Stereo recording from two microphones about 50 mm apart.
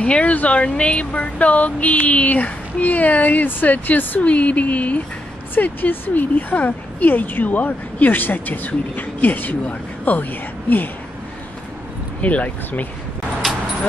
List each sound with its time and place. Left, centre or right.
0.0 s speech: left
5.5 s speech: left
12.2 s speech: left